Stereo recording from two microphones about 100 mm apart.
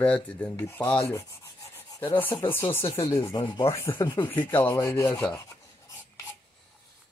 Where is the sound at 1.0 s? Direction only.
30° left (ahead or behind).